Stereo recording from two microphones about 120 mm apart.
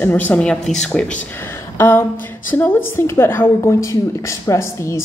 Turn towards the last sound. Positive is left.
turn(degrees=25)  # may be behind; listen again after turning